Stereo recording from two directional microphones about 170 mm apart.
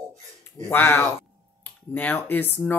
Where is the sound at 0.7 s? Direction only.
15° left (ahead or behind).